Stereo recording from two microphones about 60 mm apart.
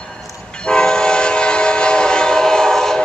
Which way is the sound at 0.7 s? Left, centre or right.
Centre.